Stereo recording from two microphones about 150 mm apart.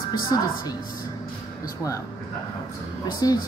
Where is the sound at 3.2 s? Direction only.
25° left (ahead or behind).